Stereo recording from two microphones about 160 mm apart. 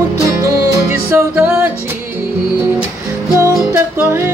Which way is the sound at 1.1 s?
10° right (ahead or behind).